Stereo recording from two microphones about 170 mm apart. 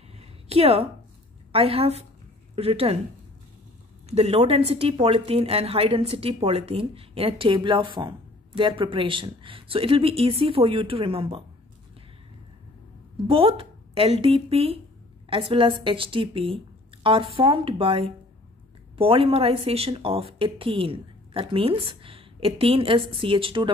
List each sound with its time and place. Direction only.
0.1 s a sound: 35° right (ahead or behind)
1.5 s a woman's voice: 35° right (ahead or behind)
4.1 s a woman's voice: 35° right (ahead or behind)
13.3 s a woman's voice: 35° right (ahead or behind)